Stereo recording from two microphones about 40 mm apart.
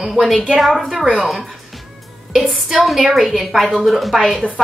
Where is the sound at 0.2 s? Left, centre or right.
Centre.